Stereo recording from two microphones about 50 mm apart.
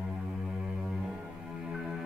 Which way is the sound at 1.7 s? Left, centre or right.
Centre.